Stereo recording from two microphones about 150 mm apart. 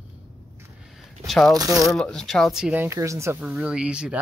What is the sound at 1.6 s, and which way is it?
Speech, 25° right (ahead or behind).